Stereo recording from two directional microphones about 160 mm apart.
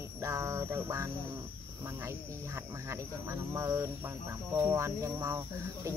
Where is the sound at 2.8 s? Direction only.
15° right (ahead or behind).